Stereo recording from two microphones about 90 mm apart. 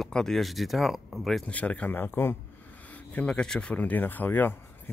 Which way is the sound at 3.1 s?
10° left (ahead or behind).